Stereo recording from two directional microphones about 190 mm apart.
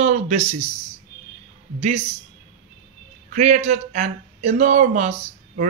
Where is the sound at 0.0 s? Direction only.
35° right (ahead or behind).